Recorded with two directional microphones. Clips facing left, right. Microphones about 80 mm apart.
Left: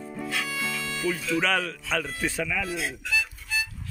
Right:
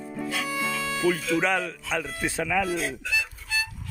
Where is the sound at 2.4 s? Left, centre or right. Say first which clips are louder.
Right 5 dB; right.